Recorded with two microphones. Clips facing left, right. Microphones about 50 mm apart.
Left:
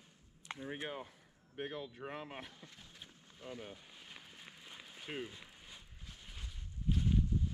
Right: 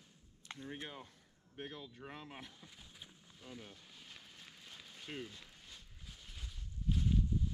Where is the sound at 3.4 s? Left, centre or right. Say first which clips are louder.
Left 5 dB; left.